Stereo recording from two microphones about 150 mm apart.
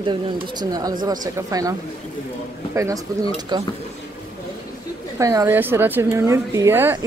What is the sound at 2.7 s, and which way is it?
Speech, 20° right (ahead or behind).